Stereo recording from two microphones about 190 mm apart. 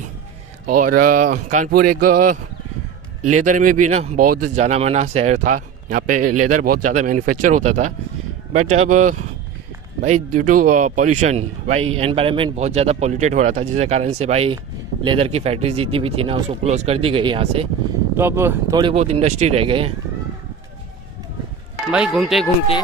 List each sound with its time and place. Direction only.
0.7 s speech: 45° right (ahead or behind)
3.3 s speech: 40° right (ahead or behind)
4.2 s speech: 45° right (ahead or behind); by 17.6 s 30° right (ahead or behind)
18.1 s speech: 10° right (ahead or behind)
18.9 s speech: 35° right (ahead or behind)
21.9 s speech: 5° right (ahead or behind)